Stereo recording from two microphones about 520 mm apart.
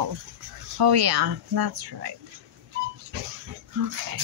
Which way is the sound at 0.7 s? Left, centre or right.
Right.